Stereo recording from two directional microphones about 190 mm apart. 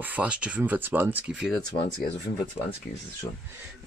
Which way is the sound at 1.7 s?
45° left (ahead or behind).